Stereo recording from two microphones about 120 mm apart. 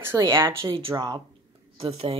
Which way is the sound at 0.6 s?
50° right (ahead or behind).